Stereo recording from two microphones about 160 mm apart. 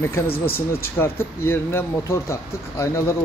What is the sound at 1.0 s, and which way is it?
Speech, 15° left (ahead or behind).